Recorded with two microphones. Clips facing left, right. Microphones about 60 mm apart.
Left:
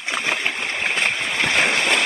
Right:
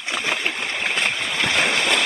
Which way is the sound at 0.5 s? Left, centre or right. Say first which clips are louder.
Left 1 dB; left.